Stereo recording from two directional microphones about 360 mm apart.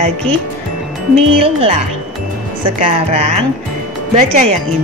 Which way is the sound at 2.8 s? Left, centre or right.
Centre.